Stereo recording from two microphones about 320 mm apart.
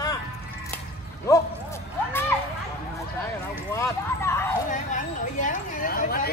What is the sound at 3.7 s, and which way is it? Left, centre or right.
Clip-clop, centre.